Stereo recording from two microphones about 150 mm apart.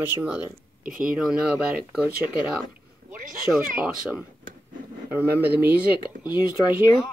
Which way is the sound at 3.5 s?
5° left (ahead or behind).